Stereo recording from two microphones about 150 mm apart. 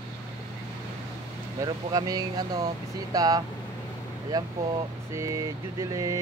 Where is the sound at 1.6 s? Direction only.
25° right (ahead or behind).